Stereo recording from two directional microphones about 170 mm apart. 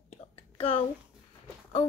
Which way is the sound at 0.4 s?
35° left (ahead or behind).